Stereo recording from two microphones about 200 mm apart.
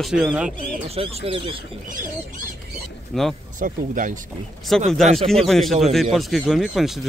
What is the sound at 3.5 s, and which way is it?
Speech, 40° right (ahead or behind).